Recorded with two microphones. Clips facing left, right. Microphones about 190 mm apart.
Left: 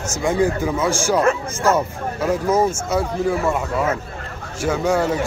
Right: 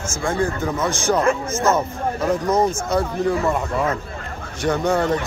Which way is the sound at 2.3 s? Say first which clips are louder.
Left 2 dB; 5° left (ahead or behind).